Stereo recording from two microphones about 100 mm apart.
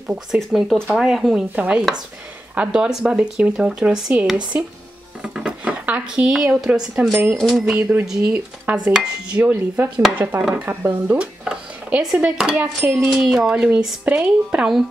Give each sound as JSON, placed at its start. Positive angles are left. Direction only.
{"t": 0.1, "sound": "speech", "side_deg": -5}
{"t": 7.3, "sound": "speech", "side_deg": 0}
{"t": 7.6, "sound": "speech", "side_deg": -15}